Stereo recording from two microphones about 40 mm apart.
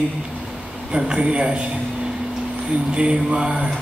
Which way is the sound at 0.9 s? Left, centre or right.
Right.